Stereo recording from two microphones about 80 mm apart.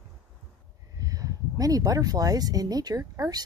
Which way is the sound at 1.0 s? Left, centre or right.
Right.